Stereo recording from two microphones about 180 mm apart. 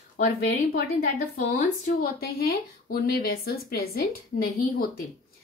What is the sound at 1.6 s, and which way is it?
A woman's voice, 55° left (ahead or behind).